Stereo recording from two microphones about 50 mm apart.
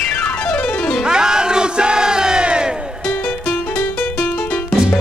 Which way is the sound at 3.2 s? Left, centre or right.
Left.